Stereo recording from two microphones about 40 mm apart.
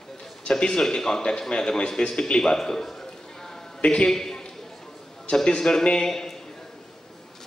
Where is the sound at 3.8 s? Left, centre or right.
Left.